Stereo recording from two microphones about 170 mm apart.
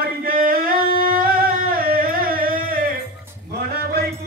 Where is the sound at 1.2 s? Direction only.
55° right (ahead or behind).